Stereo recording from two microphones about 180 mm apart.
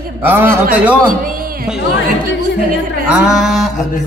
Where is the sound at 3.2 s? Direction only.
Centre (ahead or behind).